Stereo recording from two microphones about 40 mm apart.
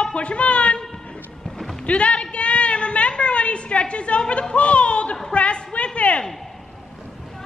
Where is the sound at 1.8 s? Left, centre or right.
Left.